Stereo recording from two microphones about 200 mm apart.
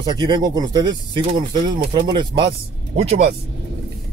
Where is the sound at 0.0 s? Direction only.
20° right (ahead or behind).